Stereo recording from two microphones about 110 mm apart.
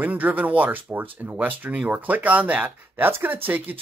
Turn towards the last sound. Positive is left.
turn(degrees=-15)  # may be behind; listen again after turning